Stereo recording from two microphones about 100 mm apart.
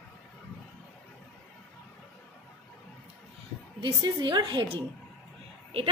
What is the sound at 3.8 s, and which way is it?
A woman's voice, 50° right (ahead or behind).